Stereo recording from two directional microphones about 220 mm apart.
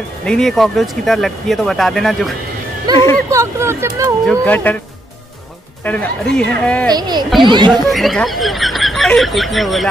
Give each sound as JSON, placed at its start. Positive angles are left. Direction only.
{"t": 0.2, "sound": "speech", "side_deg": 5}
{"t": 2.9, "sound": "speech", "side_deg": -15}
{"t": 4.3, "sound": "speech", "side_deg": 5}
{"t": 5.9, "sound": "speech", "side_deg": 5}
{"t": 6.9, "sound": "speech", "side_deg": -20}
{"t": 7.9, "sound": "speech", "side_deg": 0}